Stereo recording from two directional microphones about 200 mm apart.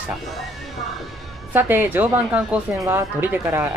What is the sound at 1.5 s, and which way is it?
A woman's voice, 10° right (ahead or behind).